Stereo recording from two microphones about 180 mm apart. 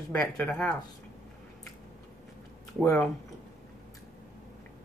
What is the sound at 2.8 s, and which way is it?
Speech, 5° left (ahead or behind).